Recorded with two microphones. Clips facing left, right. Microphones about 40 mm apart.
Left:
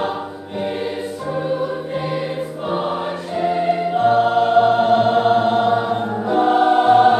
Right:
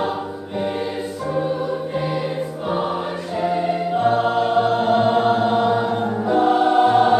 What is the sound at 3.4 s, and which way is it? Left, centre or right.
Music, centre.